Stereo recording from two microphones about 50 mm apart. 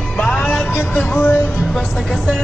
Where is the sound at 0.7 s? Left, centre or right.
Left.